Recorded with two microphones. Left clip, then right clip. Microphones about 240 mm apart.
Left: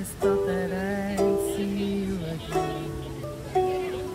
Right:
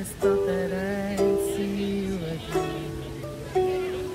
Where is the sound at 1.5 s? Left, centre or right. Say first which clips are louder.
Right 1 dB; centre.